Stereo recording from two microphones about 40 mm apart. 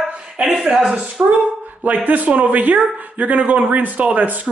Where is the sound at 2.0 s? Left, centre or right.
Right.